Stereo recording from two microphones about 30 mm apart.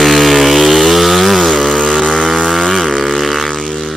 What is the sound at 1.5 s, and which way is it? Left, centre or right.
Chainsaw, centre.